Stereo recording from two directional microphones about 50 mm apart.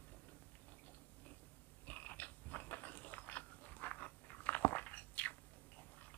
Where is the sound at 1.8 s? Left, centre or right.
Left.